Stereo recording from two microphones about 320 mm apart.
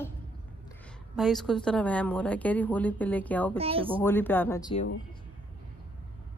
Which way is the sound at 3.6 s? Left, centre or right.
Centre.